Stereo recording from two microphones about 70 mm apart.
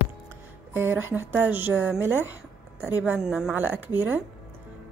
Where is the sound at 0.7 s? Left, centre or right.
Right.